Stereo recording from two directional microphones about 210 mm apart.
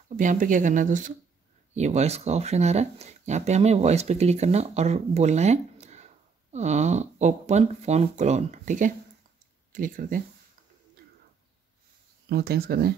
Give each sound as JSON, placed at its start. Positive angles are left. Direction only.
{"t": 0.1, "sound": "speech", "side_deg": -35}
{"t": 12.3, "sound": "speech", "side_deg": -50}